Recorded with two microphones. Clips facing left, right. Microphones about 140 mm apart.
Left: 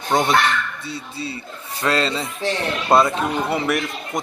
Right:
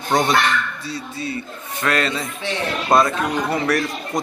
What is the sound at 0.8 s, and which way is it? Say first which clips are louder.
A man's voice: right 2 dB; 25° left (ahead or behind).